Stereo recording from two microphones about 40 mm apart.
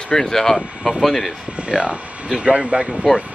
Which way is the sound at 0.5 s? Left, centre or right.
Centre.